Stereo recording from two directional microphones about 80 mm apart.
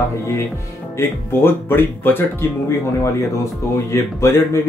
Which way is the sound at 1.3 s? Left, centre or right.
Left.